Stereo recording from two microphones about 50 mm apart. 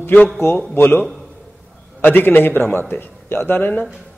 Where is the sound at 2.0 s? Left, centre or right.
Left.